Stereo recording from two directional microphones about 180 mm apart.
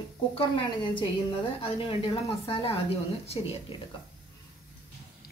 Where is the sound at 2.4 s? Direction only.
30° left (ahead or behind).